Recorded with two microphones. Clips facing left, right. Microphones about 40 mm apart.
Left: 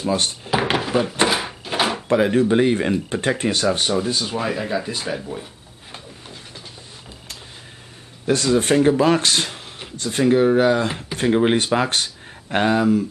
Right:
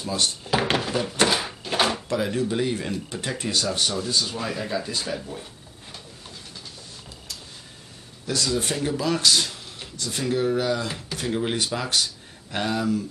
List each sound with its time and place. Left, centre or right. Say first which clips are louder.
0.0 s speech: left 5 dB; left
0.5 s drawer open or close: left 4 dB; centre
2.0 s speech: left 8 dB; left; by 5.5 s centre
8.3 s speech: left 8 dB; left